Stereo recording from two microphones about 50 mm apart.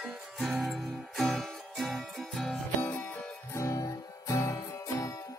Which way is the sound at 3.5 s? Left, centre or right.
Left.